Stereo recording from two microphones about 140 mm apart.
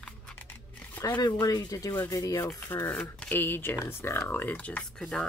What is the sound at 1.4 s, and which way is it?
Speech, 25° left (ahead or behind).